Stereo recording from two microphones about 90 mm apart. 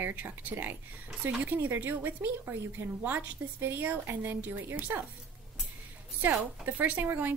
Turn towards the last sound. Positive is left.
turn(degrees=-20)  # may be behind; listen again after turning